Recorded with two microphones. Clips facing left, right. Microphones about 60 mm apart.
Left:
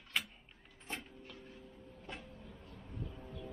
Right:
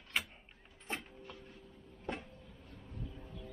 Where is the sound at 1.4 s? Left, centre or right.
Centre.